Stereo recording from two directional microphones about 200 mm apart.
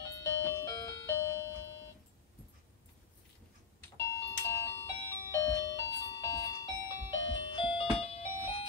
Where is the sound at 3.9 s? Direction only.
15° left (ahead or behind).